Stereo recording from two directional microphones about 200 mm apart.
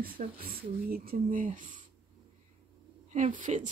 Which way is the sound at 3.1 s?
40° right (ahead or behind).